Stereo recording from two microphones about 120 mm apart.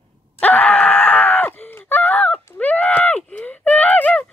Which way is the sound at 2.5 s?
10° left (ahead or behind).